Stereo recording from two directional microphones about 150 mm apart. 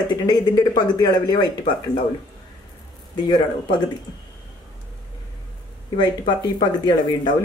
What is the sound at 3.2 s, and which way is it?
Speech, 30° left (ahead or behind).